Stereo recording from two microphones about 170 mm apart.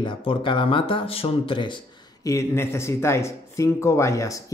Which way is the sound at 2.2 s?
15° left (ahead or behind).